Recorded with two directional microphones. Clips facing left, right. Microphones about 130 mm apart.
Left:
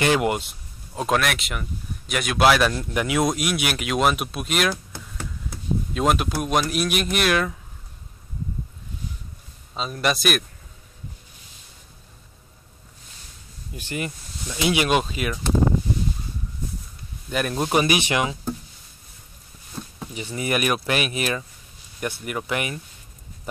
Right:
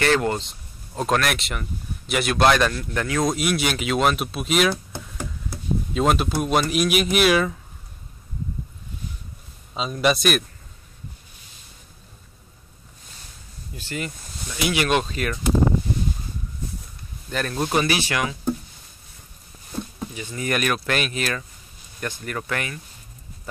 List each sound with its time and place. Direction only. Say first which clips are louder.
0.0 s speech: even; 15° left (ahead or behind)
2.7 s speech: left 2 dB; 20° left (ahead or behind)
3.3 s speech: right 1 dB; centre (ahead or behind)
5.9 s speech: right 1 dB; centre (ahead or behind)
9.8 s speech: right 3 dB; centre (ahead or behind)
13.7 s speech: left 1 dB; 20° left (ahead or behind)
17.3 s speech: left 1 dB; 15° left (ahead or behind)
20.2 s speech: left 1 dB; 15° left (ahead or behind)